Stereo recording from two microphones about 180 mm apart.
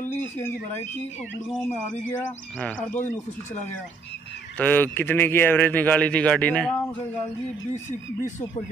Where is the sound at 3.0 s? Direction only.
40° left (ahead or behind).